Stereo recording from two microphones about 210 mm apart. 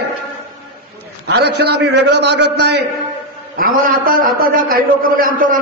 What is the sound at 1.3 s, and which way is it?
A man's voice, 50° right (ahead or behind).